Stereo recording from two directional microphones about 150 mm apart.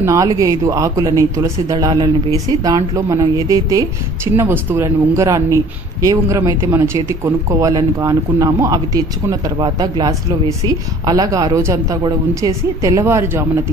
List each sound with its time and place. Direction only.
0.0 s speech: 20° right (ahead or behind)